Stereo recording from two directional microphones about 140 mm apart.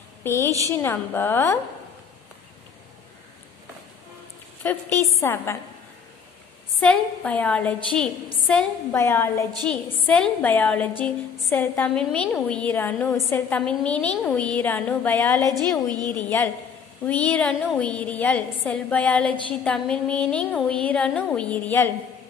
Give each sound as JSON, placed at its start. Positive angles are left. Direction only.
{"t": 0.2, "sound": "a woman's voice", "side_deg": 20}
{"t": 4.6, "sound": "a woman's voice", "side_deg": 15}
{"t": 6.8, "sound": "a woman's voice", "side_deg": 10}
{"t": 8.9, "sound": "a woman's voice", "side_deg": 15}
{"t": 15.4, "sound": "a woman's voice", "side_deg": -30}
{"t": 16.1, "sound": "a woman's voice", "side_deg": 15}